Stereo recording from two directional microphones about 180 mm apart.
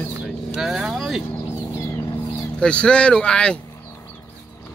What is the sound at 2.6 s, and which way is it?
Speech, 5° left (ahead or behind).